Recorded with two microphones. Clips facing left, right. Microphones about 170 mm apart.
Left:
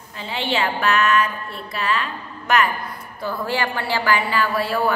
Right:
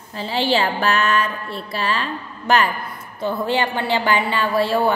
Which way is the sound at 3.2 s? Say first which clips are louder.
Right 3 dB; 20° right (ahead or behind).